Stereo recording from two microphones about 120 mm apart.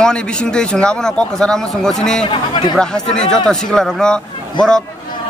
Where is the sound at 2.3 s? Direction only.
40° left (ahead or behind).